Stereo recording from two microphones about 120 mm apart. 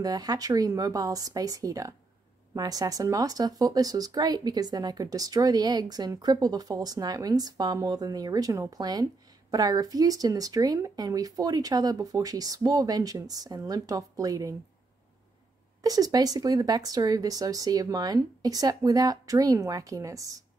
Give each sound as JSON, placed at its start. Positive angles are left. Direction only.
{"t": 0.0, "sound": "speech", "side_deg": -35}
{"t": 15.8, "sound": "speech", "side_deg": -30}